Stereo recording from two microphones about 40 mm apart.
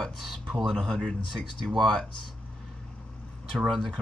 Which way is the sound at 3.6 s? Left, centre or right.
Centre.